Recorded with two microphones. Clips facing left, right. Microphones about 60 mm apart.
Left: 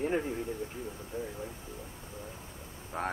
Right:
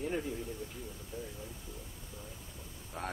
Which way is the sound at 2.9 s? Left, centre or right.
Left.